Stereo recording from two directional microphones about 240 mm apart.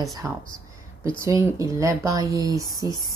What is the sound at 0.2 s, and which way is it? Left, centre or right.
Speech, centre.